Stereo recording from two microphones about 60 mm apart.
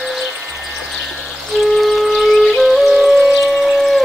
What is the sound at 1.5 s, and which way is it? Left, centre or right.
Music, centre.